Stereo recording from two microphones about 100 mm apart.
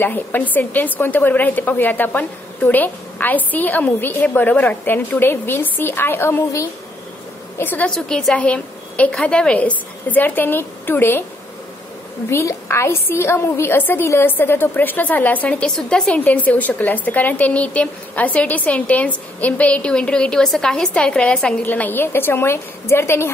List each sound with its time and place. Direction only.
0.0 s a woman's voice: 20° left (ahead or behind)
7.9 s a woman's voice: 5° left (ahead or behind); by 11.2 s 20° left (ahead or behind)
12.3 s a woman's voice: 25° left (ahead or behind)